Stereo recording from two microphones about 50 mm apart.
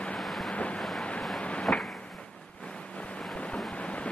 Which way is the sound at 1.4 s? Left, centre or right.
Left.